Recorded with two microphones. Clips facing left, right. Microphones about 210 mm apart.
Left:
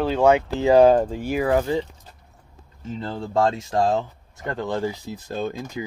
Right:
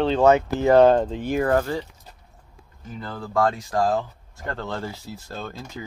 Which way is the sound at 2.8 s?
25° left (ahead or behind).